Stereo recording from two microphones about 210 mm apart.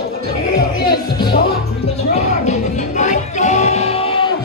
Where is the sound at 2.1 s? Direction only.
35° left (ahead or behind).